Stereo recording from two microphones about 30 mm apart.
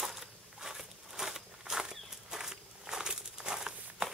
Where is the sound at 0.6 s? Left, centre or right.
Centre.